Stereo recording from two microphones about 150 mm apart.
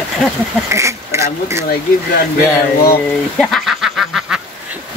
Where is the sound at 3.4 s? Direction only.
Centre (ahead or behind).